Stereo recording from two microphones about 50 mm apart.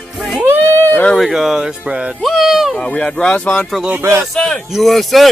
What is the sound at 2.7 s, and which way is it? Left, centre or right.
Speech, left.